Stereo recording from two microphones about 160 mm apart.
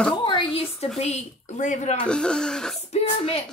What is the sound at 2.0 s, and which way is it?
Speech, 5° left (ahead or behind).